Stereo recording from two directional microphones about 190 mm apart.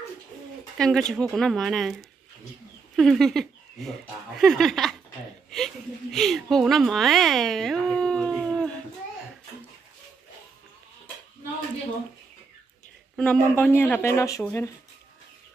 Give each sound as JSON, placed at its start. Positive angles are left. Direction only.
{"t": 0.7, "sound": "speech", "side_deg": 5}
{"t": 6.1, "sound": "speech", "side_deg": 0}
{"t": 13.1, "sound": "speech", "side_deg": 5}